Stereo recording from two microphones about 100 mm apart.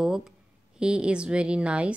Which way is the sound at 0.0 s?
5° right (ahead or behind).